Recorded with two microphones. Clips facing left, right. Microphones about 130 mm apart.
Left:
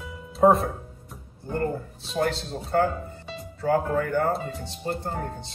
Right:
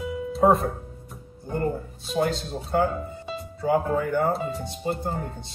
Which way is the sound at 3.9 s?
20° right (ahead or behind).